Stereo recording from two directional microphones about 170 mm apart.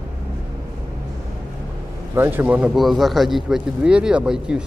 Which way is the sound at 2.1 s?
15° right (ahead or behind).